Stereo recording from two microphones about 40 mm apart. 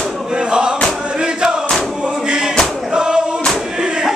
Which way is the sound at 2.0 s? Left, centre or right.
Right.